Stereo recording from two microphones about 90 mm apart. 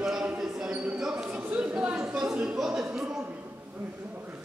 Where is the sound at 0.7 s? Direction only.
15° right (ahead or behind).